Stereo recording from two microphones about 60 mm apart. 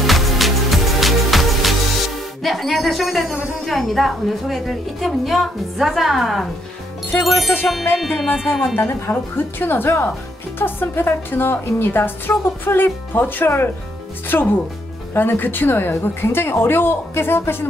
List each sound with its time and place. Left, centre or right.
0.0 s music: centre
2.4 s speech: centre
8.7 s a woman's voice: left